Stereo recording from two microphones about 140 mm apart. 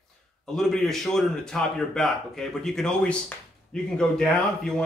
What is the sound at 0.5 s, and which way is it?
A man's voice, 5° left (ahead or behind).